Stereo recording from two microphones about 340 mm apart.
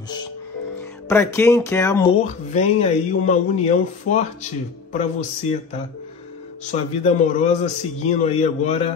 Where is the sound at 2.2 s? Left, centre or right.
Centre.